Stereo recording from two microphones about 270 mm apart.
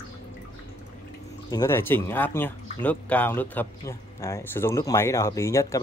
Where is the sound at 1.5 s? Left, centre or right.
Centre.